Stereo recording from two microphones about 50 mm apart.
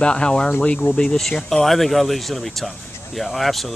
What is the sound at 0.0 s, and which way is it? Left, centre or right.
Speech, centre.